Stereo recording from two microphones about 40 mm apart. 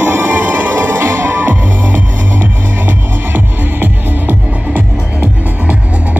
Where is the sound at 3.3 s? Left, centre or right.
Right.